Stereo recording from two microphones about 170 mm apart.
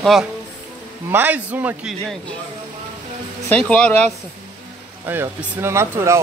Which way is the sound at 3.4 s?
5° left (ahead or behind).